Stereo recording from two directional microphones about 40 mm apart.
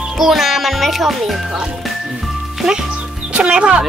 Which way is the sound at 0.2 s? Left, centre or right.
Centre.